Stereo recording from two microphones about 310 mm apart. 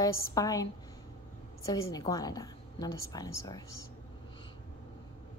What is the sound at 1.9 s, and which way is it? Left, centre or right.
A woman's voice, centre.